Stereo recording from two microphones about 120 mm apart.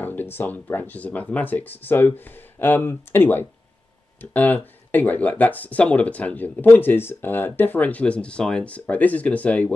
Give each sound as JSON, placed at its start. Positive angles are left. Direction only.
{"t": 0.0, "sound": "speech", "side_deg": 15}